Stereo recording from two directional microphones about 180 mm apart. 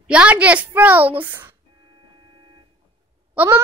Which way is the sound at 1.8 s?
30° right (ahead or behind).